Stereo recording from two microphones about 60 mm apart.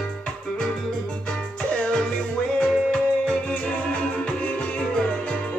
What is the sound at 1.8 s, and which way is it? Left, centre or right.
Music, centre.